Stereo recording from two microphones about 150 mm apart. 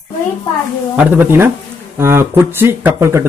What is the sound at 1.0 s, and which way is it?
Speech, 10° right (ahead or behind).